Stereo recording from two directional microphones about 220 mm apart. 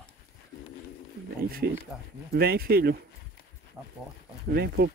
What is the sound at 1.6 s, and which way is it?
Speech, 45° right (ahead or behind).